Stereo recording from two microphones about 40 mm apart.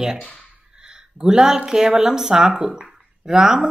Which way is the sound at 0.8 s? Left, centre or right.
Centre.